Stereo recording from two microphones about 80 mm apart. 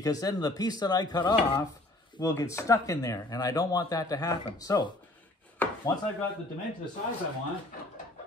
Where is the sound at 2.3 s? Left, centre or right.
Left.